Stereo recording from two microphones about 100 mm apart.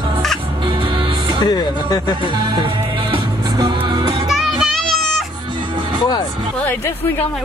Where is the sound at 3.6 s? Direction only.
50° right (ahead or behind).